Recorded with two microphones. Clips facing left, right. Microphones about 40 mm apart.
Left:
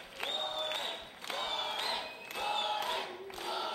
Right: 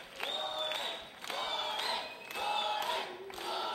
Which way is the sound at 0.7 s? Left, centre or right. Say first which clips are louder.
Even; centre.